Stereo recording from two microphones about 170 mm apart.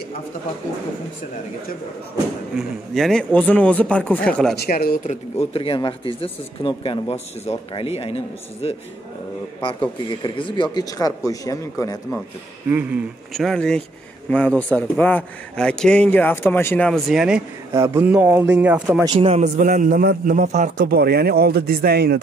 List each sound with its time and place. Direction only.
2.9 s speech: centre (ahead or behind)
4.6 s speech: 60° left (ahead or behind)
5.0 s speech: 40° left (ahead or behind)
10.0 s speech: 30° left (ahead or behind)
12.6 s speech: 10° right (ahead or behind)
13.3 s speech: centre (ahead or behind)
17.7 s speech: 15° right (ahead or behind)
19.0 s a man's voice: 35° right (ahead or behind); by 22.2 s 65° right (ahead or behind)